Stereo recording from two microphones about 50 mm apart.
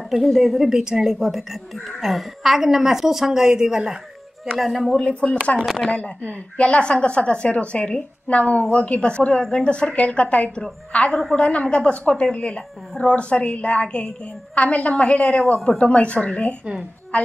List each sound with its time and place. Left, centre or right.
0.1 s a woman's voice: centre
0.7 s speech: centre
4.6 s a woman's voice: centre
4.9 s a woman's voice: centre
15.3 s speech: centre
15.8 s a woman's voice: left